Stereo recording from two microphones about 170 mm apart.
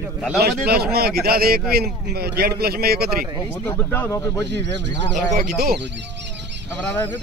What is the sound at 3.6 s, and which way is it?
Speech, 10° left (ahead or behind).